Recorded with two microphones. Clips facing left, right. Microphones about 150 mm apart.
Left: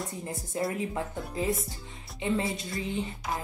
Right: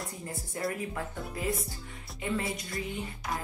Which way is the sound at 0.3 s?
20° left (ahead or behind).